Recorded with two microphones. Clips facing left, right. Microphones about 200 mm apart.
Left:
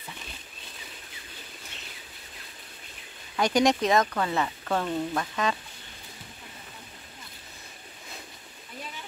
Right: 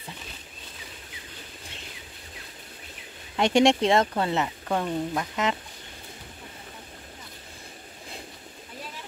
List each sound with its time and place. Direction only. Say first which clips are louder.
3.3 s speech: right 3 dB; 25° right (ahead or behind)